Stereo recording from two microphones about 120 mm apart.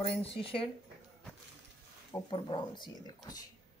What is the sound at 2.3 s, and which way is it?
Speech, 40° left (ahead or behind).